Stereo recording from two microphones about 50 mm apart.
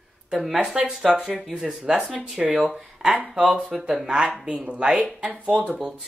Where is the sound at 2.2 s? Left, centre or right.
Right.